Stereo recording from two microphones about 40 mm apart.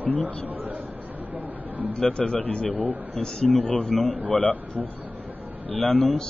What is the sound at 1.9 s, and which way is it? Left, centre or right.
Speech, left.